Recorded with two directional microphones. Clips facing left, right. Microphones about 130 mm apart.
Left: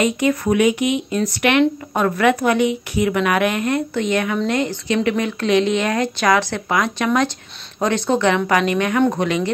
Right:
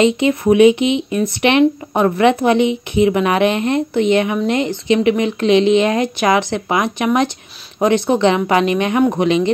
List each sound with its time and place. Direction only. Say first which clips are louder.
0.0 s speech: right 4 dB; 25° right (ahead or behind)